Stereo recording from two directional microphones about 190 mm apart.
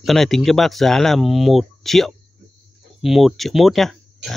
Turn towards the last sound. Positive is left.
turn(degrees=0)  # may be behind; listen again after turning